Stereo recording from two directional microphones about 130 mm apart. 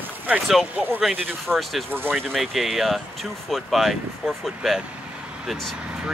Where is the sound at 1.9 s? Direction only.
15° right (ahead or behind).